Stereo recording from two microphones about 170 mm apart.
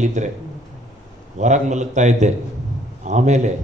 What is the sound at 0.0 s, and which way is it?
Speech, 45° right (ahead or behind).